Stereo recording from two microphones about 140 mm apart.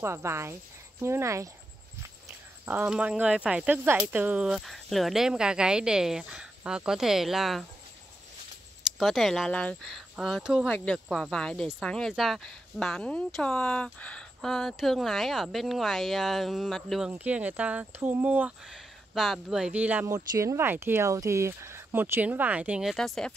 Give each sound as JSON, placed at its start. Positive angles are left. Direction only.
{"t": 0.0, "sound": "speech", "side_deg": -20}
{"t": 2.6, "sound": "speech", "side_deg": -10}
{"t": 9.0, "sound": "speech", "side_deg": 0}
{"t": 10.7, "sound": "speech", "side_deg": 5}
{"t": 17.1, "sound": "speech", "side_deg": -10}
{"t": 20.1, "sound": "speech", "side_deg": -25}